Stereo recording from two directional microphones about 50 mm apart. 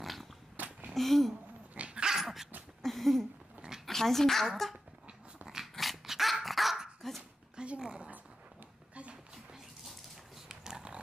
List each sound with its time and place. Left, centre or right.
0.0 s biting: centre
0.6 s a sound: right
0.9 s speech: centre
1.8 s dog: right
2.0 s dog: centre
2.8 s a sound: centre
3.8 s speech: centre
5.5 s dog: centre
7.5 s a sound: right
7.8 s dog: centre
8.9 s a sound: right
9.3 s dog: centre